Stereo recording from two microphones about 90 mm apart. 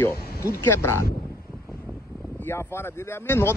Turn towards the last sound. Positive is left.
turn(degrees=25)  # may be behind; listen again after turning